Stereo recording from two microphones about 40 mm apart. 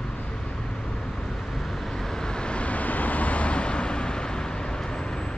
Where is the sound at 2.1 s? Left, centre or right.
Centre.